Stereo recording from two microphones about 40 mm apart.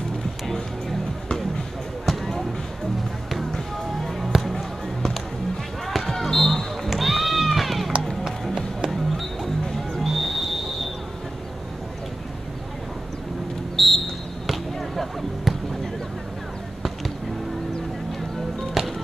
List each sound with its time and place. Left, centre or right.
0.5 s music: centre
2.0 s basketball bounce: centre
3.3 s music: centre
5.9 s basketball bounce: centre
8.9 s music: centre
10.0 s music: centre
13.7 s a sound: centre
14.5 s basketball bounce: centre
18.8 s music: centre